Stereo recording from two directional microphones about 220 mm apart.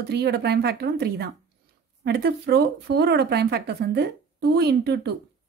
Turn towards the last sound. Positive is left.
turn(degrees=-50)  # may be behind; listen again after turning